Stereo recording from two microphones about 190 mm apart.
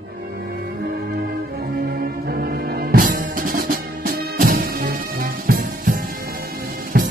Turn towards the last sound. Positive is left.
turn(degrees=-50)  # may be behind; listen again after turning